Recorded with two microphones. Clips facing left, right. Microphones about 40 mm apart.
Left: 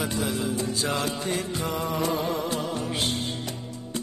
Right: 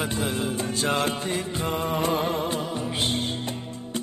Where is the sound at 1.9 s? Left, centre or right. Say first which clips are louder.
Right 2 dB; right.